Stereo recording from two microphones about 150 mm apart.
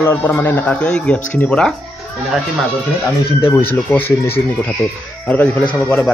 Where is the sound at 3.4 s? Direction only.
15° left (ahead or behind).